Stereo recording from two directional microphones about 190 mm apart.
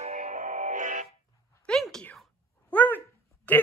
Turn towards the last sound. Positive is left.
turn(degrees=10)  # may be behind; listen again after turning